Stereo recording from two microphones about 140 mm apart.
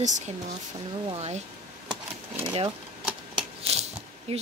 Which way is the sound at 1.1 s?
50° right (ahead or behind).